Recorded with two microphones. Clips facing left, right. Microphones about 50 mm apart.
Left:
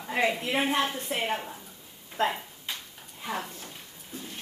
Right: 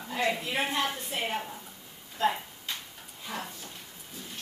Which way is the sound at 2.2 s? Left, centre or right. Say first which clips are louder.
Even; left.